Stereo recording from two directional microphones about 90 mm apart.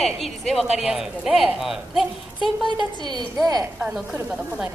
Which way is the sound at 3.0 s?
55° right (ahead or behind).